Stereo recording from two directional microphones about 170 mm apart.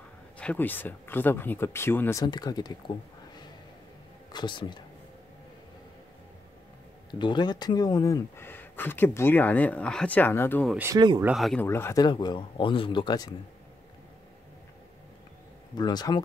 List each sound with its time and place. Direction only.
0.4 s speech: 10° left (ahead or behind); by 2.7 s 25° left (ahead or behind)
4.3 s speech: 25° left (ahead or behind)
7.1 s speech: 25° left (ahead or behind)
10.9 s speech: 20° right (ahead or behind)
11.3 s speech: centre (ahead or behind)
11.6 s speech: 15° left (ahead or behind)
15.7 s speech: 25° left (ahead or behind)